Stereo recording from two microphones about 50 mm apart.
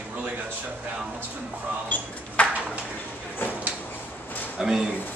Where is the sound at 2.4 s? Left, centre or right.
Left.